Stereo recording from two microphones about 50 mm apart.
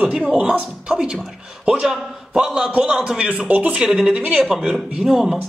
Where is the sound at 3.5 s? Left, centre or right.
Right.